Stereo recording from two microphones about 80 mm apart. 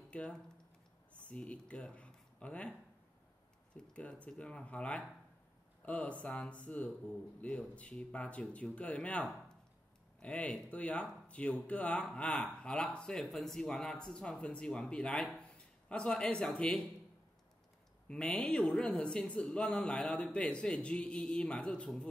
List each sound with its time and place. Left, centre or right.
0.1 s speech: centre
3.7 s speech: centre
15.5 s a sound: centre
16.4 s speech: centre
18.0 s speech: centre